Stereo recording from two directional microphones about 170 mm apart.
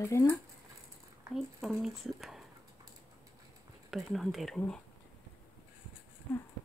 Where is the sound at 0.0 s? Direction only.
15° left (ahead or behind).